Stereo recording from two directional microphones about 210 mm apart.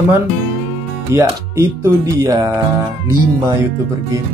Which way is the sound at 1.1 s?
10° right (ahead or behind).